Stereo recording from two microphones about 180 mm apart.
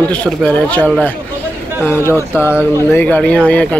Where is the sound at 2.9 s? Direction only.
10° left (ahead or behind).